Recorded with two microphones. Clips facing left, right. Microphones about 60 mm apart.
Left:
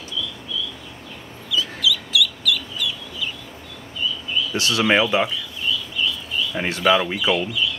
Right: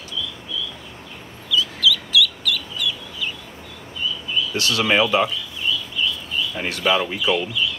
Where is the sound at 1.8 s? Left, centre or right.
Centre.